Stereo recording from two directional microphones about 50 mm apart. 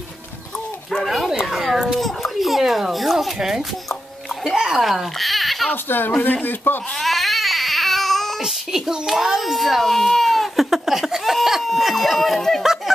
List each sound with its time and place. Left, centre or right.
1.0 s a sound: centre
1.4 s a child's voice: centre
5.9 s a man's voice: left
7.0 s baby cry: centre
8.4 s a child's voice: centre